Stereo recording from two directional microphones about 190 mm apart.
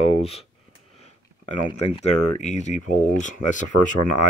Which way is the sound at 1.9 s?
35° left (ahead or behind).